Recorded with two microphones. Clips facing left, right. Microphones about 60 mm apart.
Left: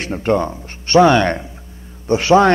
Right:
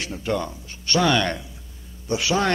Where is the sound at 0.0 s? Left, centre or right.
Left.